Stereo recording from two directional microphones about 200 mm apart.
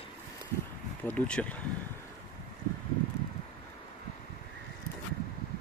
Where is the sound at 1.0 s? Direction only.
5° left (ahead or behind).